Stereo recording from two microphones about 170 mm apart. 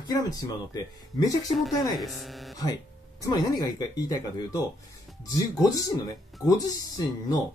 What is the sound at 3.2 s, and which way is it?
Speech, 25° left (ahead or behind).